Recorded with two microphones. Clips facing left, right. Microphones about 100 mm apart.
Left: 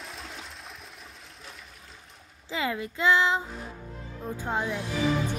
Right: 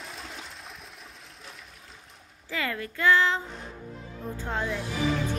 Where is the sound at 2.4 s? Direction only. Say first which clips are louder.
Left 2 dB; 20° left (ahead or behind).